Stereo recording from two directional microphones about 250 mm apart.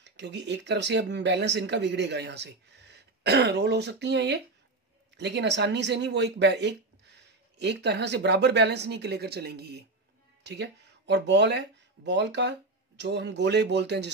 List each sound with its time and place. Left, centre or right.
0.0 s speech: right